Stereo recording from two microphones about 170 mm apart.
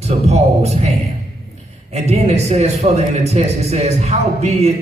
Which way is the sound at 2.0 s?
40° right (ahead or behind).